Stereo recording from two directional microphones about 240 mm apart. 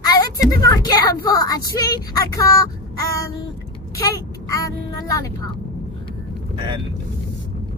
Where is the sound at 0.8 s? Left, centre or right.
Centre.